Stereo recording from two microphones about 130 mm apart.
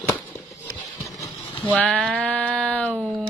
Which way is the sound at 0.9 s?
25° left (ahead or behind).